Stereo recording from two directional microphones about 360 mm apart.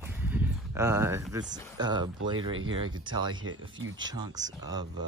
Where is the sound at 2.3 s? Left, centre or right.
Right.